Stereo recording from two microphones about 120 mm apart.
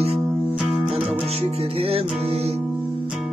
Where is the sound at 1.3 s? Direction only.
60° right (ahead or behind).